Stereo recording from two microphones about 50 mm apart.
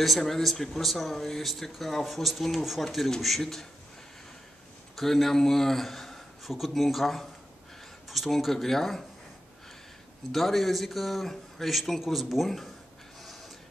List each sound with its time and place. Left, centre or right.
0.0 s speech: centre
4.9 s a man's voice: centre
10.3 s speech: centre